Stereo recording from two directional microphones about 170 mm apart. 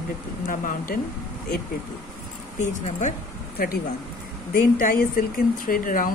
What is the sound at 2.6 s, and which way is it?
Speech, 45° left (ahead or behind).